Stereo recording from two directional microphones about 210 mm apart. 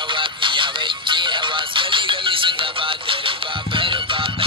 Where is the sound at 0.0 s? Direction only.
25° right (ahead or behind).